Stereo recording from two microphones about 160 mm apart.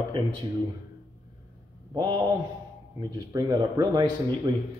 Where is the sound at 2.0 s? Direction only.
30° right (ahead or behind).